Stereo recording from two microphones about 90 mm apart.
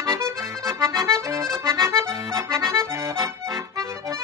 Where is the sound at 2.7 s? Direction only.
40° right (ahead or behind).